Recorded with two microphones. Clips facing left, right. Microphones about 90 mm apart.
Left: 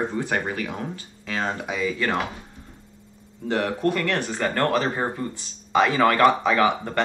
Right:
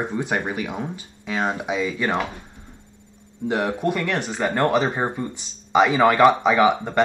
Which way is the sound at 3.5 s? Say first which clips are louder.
Right 1 dB; 15° right (ahead or behind).